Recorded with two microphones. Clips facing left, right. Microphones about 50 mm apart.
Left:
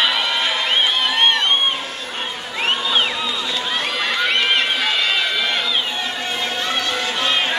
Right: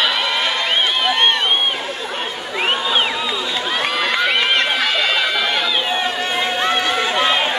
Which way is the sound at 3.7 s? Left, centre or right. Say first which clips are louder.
Right 3 dB; centre.